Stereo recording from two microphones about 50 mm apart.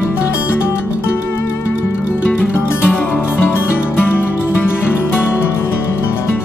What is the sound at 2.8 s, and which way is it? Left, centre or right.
Music, left.